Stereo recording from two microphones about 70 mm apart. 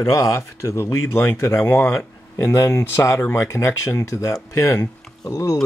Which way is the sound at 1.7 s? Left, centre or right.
Left.